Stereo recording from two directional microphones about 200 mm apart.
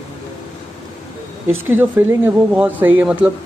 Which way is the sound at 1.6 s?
10° right (ahead or behind).